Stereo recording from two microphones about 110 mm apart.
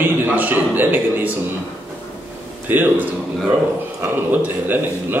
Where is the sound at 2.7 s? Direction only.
15° right (ahead or behind).